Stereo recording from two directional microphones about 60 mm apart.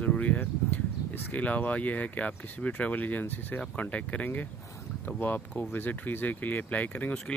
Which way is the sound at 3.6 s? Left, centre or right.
Left.